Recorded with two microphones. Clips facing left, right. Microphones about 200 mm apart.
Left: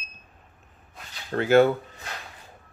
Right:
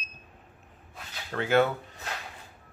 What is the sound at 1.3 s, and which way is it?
Speech, 40° left (ahead or behind).